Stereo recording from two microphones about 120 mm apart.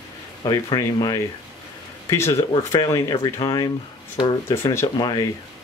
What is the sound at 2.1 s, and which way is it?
Speech, 25° left (ahead or behind).